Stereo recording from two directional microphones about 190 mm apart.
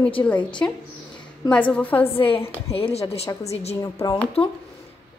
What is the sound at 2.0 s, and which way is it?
A woman's voice, 30° left (ahead or behind).